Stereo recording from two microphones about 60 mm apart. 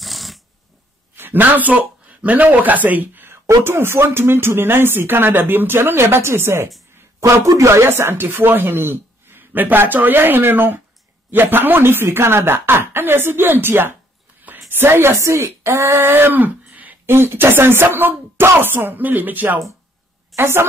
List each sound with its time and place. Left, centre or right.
0.0 s a sound: centre
1.1 s speech: right
7.2 s speech: right
14.5 s a sound: right
14.8 s a woman's voice: right
17.0 s speech: right
20.3 s speech: right